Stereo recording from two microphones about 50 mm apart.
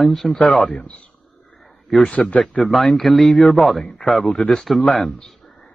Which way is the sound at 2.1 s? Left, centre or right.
Left.